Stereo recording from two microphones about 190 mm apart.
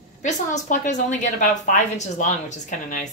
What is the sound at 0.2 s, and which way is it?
A woman's voice, 40° left (ahead or behind).